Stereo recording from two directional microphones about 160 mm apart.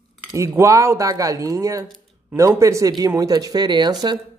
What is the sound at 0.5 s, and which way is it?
Speech, 15° right (ahead or behind).